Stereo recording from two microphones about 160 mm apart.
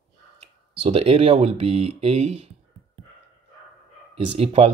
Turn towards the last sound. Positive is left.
turn(degrees=-40)  # may be behind; listen again after turning